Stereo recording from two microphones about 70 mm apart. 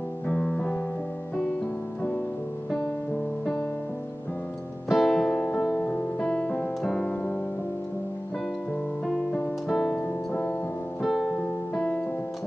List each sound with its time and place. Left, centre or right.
0.3 s music: centre
4.8 s music: centre
9.7 s music: centre
11.2 s music: centre